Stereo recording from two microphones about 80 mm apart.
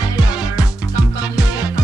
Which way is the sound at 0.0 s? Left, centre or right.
Left.